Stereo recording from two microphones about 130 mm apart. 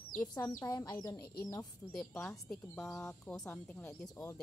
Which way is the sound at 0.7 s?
30° left (ahead or behind).